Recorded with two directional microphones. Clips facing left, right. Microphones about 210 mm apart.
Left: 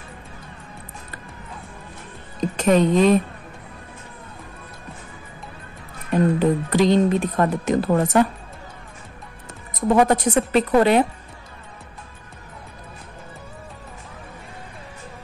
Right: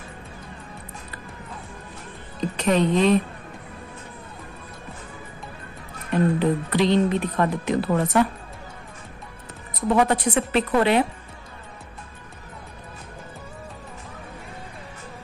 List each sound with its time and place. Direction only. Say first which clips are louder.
2.5 s speech: left 4 dB; 45° left (ahead or behind)
6.1 s speech: left 2 dB; 45° left (ahead or behind)
9.8 s speech: left 3 dB; 45° left (ahead or behind)